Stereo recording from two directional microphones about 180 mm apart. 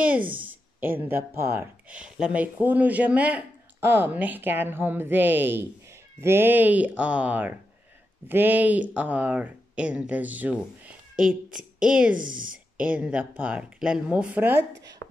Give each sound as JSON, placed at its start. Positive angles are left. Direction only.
{"t": 0.0, "sound": "a woman's voice", "side_deg": -10}
{"t": 12.2, "sound": "speech", "side_deg": -50}
{"t": 12.7, "sound": "speech", "side_deg": -5}